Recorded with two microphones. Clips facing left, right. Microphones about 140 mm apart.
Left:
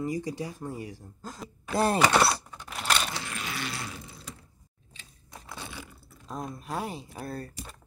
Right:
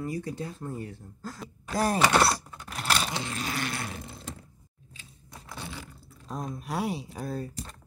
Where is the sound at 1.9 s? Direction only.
Centre (ahead or behind).